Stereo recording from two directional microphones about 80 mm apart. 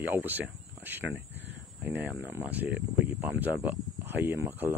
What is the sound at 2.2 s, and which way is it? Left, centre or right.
Speech, right.